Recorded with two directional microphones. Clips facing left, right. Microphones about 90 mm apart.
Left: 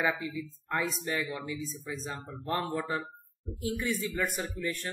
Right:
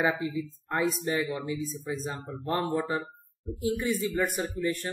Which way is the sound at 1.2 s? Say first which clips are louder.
Right 4 dB; 20° right (ahead or behind).